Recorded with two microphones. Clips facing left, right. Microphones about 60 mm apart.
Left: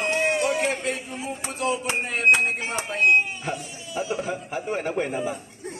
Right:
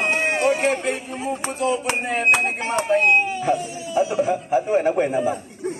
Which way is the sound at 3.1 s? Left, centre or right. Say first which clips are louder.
Right 3 dB; right.